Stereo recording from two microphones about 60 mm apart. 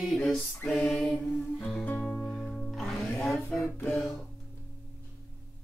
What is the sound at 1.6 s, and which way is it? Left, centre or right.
Music, centre.